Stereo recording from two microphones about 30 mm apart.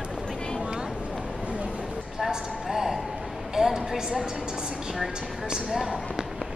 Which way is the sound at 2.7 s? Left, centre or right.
Centre.